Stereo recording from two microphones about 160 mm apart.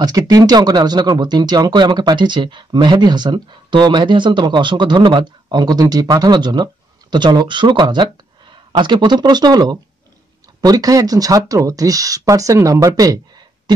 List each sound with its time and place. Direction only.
0.0 s speech: 25° right (ahead or behind)